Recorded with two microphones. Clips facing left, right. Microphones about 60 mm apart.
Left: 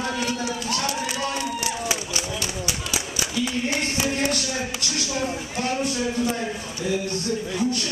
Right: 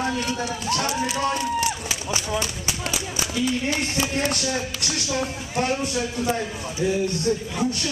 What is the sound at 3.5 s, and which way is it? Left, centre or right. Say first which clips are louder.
Speech: right 1 dB; left.